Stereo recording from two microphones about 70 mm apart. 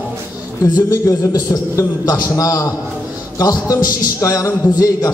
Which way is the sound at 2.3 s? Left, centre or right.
Left.